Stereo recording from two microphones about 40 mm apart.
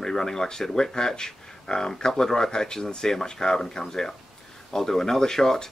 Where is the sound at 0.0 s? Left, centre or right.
Centre.